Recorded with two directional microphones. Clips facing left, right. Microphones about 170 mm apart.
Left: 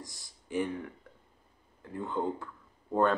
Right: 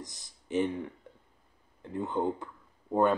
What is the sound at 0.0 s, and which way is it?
Speech, 20° right (ahead or behind).